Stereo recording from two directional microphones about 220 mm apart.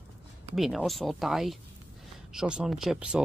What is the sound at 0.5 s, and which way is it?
Speech, centre (ahead or behind).